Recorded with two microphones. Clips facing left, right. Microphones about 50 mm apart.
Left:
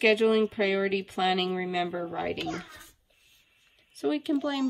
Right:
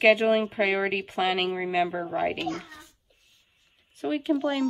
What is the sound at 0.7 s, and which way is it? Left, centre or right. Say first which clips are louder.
Speech: right 1 dB; right.